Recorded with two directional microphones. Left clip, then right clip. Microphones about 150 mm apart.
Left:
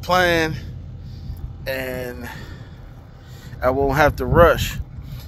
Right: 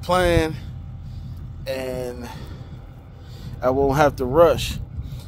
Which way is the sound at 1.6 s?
20° right (ahead or behind).